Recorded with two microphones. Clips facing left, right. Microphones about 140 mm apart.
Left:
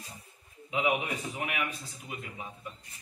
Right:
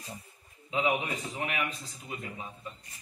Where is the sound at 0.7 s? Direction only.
10° left (ahead or behind).